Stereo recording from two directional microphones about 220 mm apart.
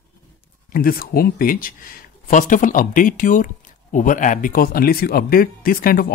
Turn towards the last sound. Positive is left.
turn(degrees=40)  # may be behind; listen again after turning